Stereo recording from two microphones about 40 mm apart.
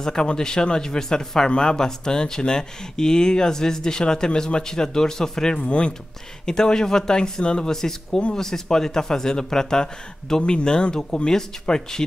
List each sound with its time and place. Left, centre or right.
0.0 s speech: centre
5.7 s speech: left
6.4 s speech: centre